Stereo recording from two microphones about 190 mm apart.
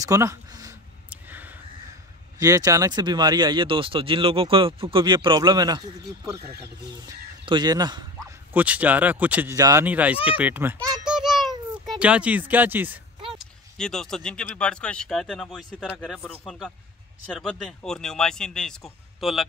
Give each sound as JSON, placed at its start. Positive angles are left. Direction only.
{"t": 0.0, "sound": "a sound", "side_deg": -15}
{"t": 2.3, "sound": "speech", "side_deg": -20}
{"t": 7.4, "sound": "speech", "side_deg": -20}
{"t": 8.5, "sound": "speech", "side_deg": -10}
{"t": 11.1, "sound": "a sound", "side_deg": 0}
{"t": 13.3, "sound": "speech", "side_deg": 0}